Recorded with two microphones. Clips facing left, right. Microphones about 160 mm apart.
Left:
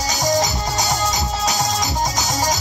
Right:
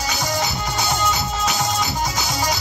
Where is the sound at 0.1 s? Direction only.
40° left (ahead or behind).